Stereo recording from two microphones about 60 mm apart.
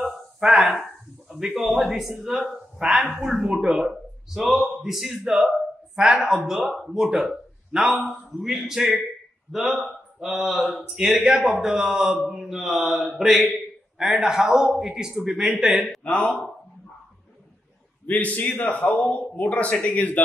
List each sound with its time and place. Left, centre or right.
0.4 s a man's voice: centre
4.3 s a man's voice: centre
16.0 s speech: centre
18.0 s speech: left